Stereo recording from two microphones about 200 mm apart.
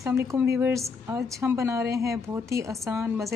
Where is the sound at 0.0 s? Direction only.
15° right (ahead or behind).